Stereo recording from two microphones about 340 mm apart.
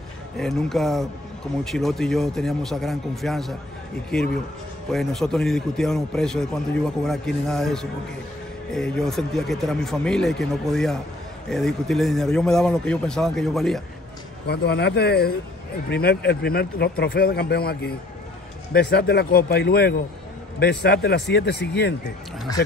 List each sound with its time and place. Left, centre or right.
0.4 s a man's voice: centre
4.9 s a man's voice: centre
14.5 s speech: left